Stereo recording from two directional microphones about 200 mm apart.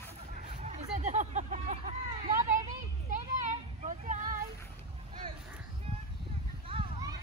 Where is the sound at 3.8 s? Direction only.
40° right (ahead or behind).